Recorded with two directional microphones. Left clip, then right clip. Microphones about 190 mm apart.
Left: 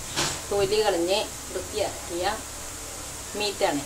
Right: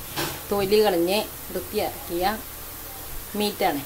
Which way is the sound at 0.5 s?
30° right (ahead or behind).